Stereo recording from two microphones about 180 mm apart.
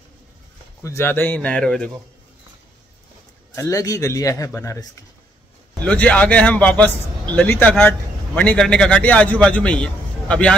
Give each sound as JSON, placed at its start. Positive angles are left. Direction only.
{"t": 0.8, "sound": "a man's voice", "side_deg": 15}
{"t": 3.5, "sound": "a man's voice", "side_deg": 15}